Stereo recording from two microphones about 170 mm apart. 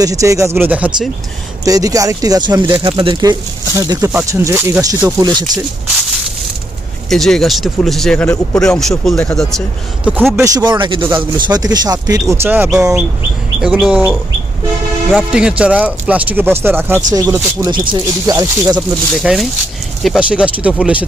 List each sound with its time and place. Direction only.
0.0 s speech: 20° right (ahead or behind)
0.6 s speech: 10° right (ahead or behind)
1.6 s speech: 20° right (ahead or behind)
7.1 s speech: centre (ahead or behind)
10.0 s speech: 10° right (ahead or behind)
15.1 s speech: 5° right (ahead or behind)
19.1 s speech: centre (ahead or behind)